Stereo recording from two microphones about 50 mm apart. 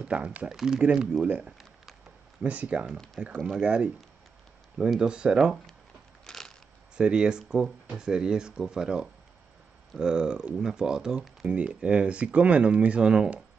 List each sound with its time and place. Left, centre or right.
0.0 s speech: right
0.5 s speech: centre
1.1 s speech: centre
2.4 s speech: right
5.0 s speech: centre
6.2 s a sound: centre
7.0 s speech: centre